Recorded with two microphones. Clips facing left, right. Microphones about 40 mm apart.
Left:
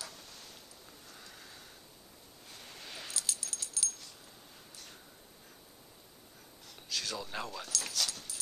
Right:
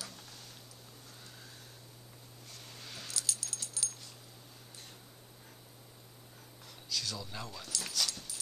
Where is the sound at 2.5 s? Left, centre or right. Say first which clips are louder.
Left 2 dB; centre.